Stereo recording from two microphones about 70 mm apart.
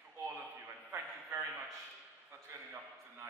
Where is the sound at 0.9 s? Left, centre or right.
Right.